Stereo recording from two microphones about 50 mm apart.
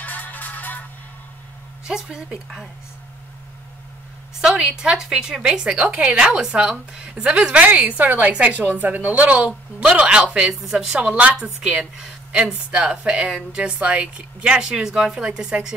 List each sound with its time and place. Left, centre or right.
0.0 s music: left
1.9 s a woman's voice: centre
4.4 s a woman's voice: centre
10.6 s a woman's voice: centre
11.0 s a woman's voice: right
11.7 s a woman's voice: centre
15.2 s a woman's voice: centre